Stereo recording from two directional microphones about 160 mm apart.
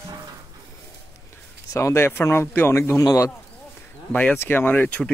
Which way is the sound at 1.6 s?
15° left (ahead or behind).